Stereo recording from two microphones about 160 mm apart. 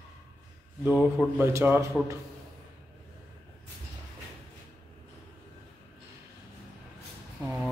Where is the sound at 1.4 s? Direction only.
15° right (ahead or behind).